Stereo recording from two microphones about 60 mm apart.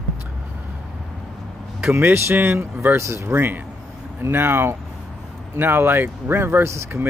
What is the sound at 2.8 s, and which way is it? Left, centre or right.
Speech, right.